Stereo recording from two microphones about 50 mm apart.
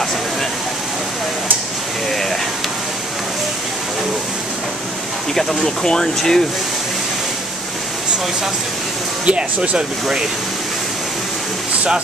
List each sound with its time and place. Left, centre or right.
5.3 s speech: centre
9.2 s speech: centre